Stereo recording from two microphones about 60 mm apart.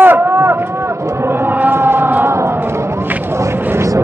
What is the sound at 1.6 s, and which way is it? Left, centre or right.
Chant, right.